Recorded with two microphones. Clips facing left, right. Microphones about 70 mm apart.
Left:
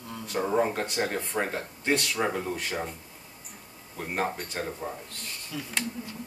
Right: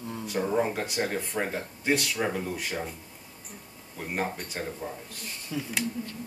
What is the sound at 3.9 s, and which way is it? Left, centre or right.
Speech, centre.